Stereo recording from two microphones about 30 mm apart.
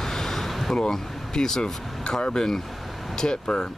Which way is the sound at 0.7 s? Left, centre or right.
Left.